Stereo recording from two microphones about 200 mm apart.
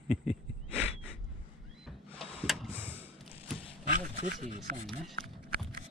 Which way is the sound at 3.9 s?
35° right (ahead or behind).